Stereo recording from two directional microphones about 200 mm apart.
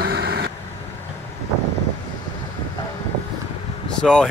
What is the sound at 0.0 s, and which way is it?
Vehicle, 50° right (ahead or behind).